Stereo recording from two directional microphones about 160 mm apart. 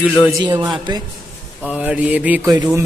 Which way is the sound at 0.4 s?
25° right (ahead or behind).